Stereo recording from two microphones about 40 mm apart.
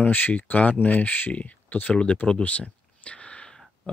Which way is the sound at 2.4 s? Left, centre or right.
Left.